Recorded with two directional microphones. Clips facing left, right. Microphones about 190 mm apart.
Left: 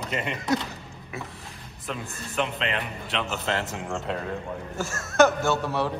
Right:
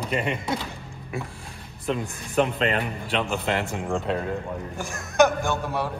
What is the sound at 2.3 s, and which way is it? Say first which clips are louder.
Speech: right 6 dB; 45° right (ahead or behind).